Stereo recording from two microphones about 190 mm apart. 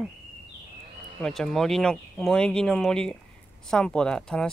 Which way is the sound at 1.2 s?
Centre (ahead or behind).